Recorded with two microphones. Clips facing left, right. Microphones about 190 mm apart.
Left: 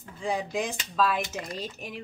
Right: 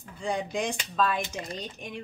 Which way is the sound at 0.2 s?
5° left (ahead or behind).